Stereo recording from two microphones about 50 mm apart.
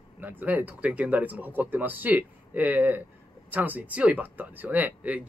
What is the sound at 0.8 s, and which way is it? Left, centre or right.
Speech, right.